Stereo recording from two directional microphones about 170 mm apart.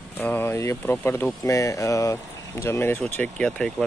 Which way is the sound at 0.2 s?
10° left (ahead or behind).